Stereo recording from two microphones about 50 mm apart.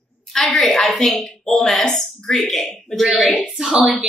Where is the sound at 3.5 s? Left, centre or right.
Centre.